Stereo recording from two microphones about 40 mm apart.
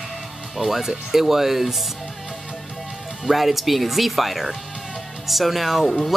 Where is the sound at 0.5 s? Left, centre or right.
Centre.